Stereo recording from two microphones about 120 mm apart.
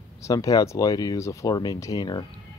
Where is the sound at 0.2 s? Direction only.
25° left (ahead or behind).